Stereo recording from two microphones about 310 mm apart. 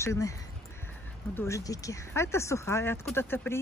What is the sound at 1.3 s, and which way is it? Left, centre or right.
Speech, centre.